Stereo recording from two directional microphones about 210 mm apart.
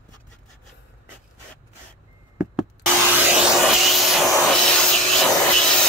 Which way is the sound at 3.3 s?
5° right (ahead or behind).